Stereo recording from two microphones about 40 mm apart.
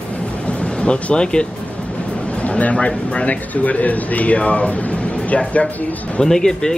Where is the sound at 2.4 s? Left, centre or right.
Left.